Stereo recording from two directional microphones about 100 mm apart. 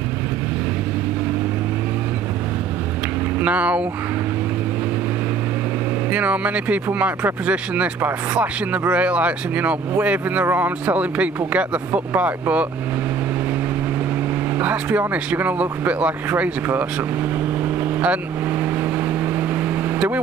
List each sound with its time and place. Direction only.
3.3 s speech: 15° right (ahead or behind)
6.1 s speech: 15° right (ahead or behind)
14.6 s speech: 15° right (ahead or behind)
18.0 s speech: 15° right (ahead or behind)